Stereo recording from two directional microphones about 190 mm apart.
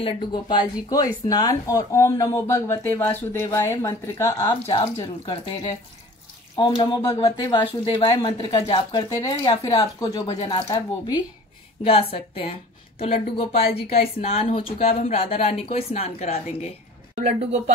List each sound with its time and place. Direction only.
0.0 s speech: 25° left (ahead or behind)
4.6 s speech: 30° left (ahead or behind)
6.5 s speech: 20° left (ahead or behind)
13.8 s speech: 30° left (ahead or behind)
17.4 s speech: 35° right (ahead or behind)